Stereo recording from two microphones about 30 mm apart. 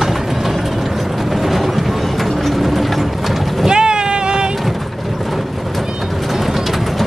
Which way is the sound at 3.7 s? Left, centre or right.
Right.